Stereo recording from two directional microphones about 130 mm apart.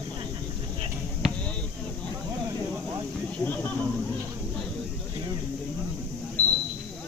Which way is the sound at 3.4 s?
15° left (ahead or behind).